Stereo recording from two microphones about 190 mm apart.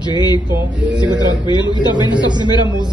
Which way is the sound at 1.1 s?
25° left (ahead or behind).